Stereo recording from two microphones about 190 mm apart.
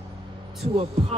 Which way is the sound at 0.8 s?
30° right (ahead or behind).